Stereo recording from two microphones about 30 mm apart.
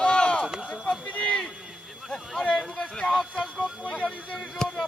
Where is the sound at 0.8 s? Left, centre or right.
Left.